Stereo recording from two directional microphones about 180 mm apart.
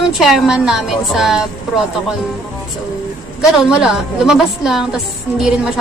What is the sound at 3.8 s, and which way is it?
A woman's voice, 5° right (ahead or behind).